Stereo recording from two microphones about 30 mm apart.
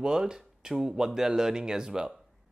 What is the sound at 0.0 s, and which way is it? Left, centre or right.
Speech, right.